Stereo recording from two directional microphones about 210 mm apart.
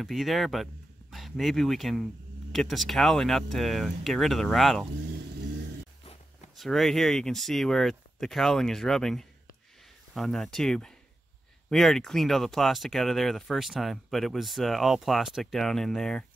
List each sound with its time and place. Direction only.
0.0 s speech: centre (ahead or behind)
6.6 s speech: centre (ahead or behind)